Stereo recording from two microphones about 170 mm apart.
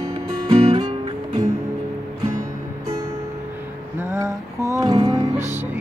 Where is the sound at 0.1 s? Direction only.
35° right (ahead or behind).